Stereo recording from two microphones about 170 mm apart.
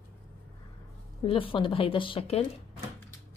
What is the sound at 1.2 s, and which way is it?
Speech, 30° left (ahead or behind).